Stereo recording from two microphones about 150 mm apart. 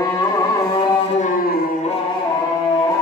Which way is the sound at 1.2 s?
70° left (ahead or behind).